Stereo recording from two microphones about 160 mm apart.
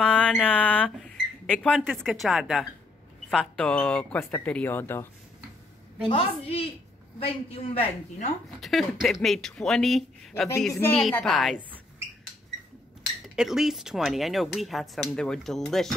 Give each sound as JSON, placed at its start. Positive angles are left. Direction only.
{"t": 0.0, "sound": "speech", "side_deg": 5}
{"t": 6.0, "sound": "a woman's voice", "side_deg": 30}
{"t": 8.5, "sound": "speech", "side_deg": 0}
{"t": 10.7, "sound": "speech", "side_deg": 15}
{"t": 11.0, "sound": "speech", "side_deg": 0}
{"t": 13.4, "sound": "speech", "side_deg": 0}